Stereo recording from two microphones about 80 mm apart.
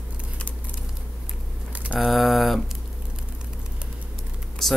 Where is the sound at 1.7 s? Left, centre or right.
Centre.